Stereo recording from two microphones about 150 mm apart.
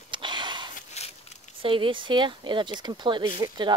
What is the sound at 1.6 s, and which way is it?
Speech, 35° right (ahead or behind).